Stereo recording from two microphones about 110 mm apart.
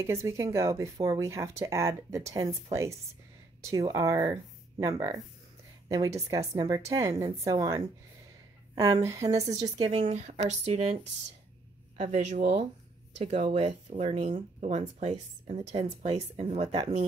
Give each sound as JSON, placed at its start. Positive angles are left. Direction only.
{"t": 0.0, "sound": "speech", "side_deg": -25}
{"t": 9.0, "sound": "speech", "side_deg": -30}
{"t": 9.8, "sound": "speech", "side_deg": -60}
{"t": 12.0, "sound": "speech", "side_deg": -90}
{"t": 13.2, "sound": "speech", "side_deg": -75}